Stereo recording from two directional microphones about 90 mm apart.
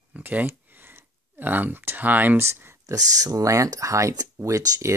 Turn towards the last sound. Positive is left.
turn(degrees=-35)  # may be behind; listen again after turning